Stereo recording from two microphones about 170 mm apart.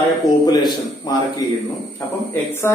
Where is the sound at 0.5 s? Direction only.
25° left (ahead or behind).